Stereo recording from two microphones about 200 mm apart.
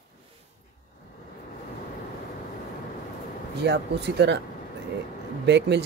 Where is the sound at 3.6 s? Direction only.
55° right (ahead or behind).